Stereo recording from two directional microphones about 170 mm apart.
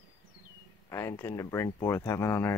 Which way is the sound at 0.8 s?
15° left (ahead or behind).